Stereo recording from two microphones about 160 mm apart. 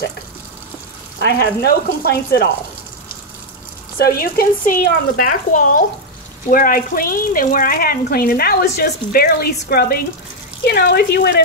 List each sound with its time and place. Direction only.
1.2 s speech: 90° left
4.0 s speech: 65° left (ahead or behind); by 11.4 s 85° left